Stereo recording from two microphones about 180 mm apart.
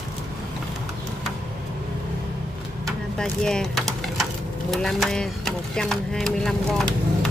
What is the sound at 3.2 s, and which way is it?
Speech, 5° left (ahead or behind).